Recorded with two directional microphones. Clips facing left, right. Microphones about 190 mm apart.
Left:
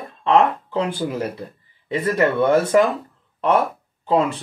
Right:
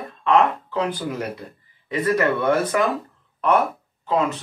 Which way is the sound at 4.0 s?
30° left (ahead or behind).